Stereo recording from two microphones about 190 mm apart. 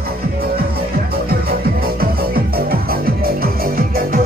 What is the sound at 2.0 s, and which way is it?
Music, 50° right (ahead or behind).